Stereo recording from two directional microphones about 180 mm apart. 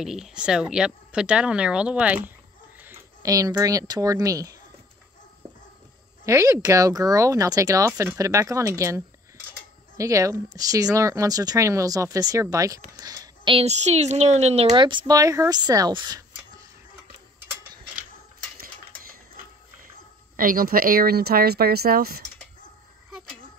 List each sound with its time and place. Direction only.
0.0 s speech: 5° right (ahead or behind); by 4.6 s 20° right (ahead or behind)
6.2 s speech: 15° right (ahead or behind); by 14.7 s 35° right (ahead or behind)
14.7 s speech: 25° right (ahead or behind)
18.6 s cutlery: 50° right (ahead or behind)
20.3 s speech: 50° right (ahead or behind)